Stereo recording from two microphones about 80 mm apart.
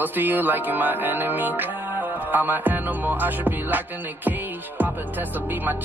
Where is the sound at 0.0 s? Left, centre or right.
Right.